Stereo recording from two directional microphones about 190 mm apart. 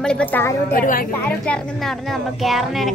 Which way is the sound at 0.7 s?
45° left (ahead or behind).